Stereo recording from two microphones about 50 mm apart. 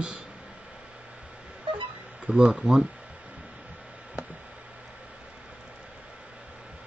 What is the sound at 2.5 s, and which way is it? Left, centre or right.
Speech, centre.